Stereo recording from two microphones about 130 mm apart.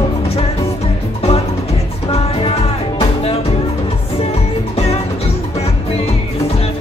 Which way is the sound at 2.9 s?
50° left (ahead or behind).